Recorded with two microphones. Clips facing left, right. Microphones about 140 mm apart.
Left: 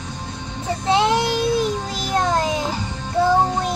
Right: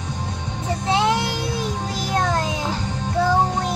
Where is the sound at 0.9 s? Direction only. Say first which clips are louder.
Left 2 dB; 25° left (ahead or behind).